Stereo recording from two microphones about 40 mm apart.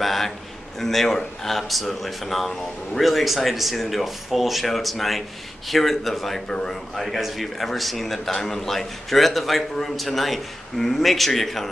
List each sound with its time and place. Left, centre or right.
0.0 s a man's voice: centre
6.5 s a man's voice: centre
7.0 s a man's voice: centre